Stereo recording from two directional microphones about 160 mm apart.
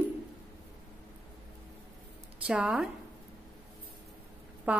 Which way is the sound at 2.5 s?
5° right (ahead or behind).